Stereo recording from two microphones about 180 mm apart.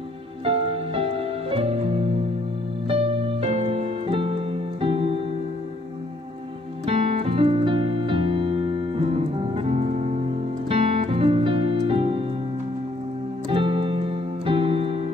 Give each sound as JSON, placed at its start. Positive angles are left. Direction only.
{"t": 0.5, "sound": "music", "side_deg": -30}
{"t": 2.9, "sound": "music", "side_deg": -30}
{"t": 6.9, "sound": "music", "side_deg": -30}
{"t": 13.5, "sound": "keyboard", "side_deg": -30}